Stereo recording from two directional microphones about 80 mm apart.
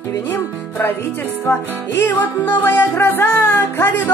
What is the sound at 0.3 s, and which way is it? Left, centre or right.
Speech, left.